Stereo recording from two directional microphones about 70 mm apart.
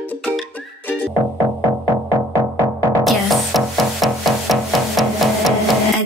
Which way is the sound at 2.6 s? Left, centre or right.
Right.